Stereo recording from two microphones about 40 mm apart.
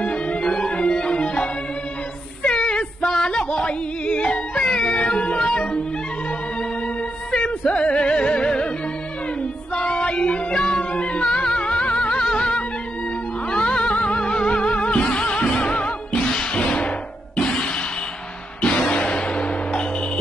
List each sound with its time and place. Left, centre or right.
0.0 s music: left
2.5 s a sound: centre
3.2 s music: left
3.6 s yodeling: left
4.6 s music: centre
7.4 s music: left
9.8 s child singing: left
11.2 s music: centre
13.5 s music: left
16.5 s a sound: left
17.4 s a sound: centre
18.6 s music: left